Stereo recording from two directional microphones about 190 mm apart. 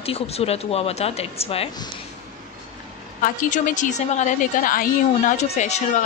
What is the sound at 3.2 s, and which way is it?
A woman's voice, 40° left (ahead or behind).